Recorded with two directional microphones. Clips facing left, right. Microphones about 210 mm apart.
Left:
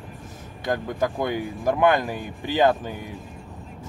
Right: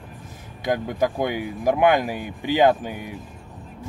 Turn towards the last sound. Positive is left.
turn(degrees=-15)  # may be behind; listen again after turning